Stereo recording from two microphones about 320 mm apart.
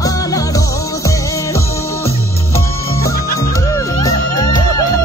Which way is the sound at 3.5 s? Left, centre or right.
Centre.